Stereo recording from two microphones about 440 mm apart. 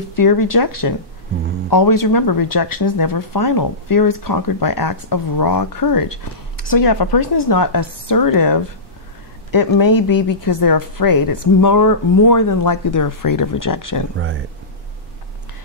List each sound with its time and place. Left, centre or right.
0.1 s speech: left
14.1 s speech: right